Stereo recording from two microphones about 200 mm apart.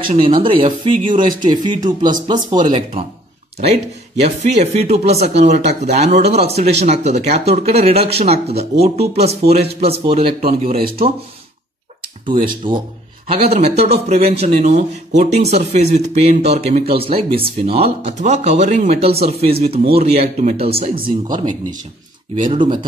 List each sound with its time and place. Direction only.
0.0 s speech: 25° right (ahead or behind)
12.3 s speech: 25° right (ahead or behind)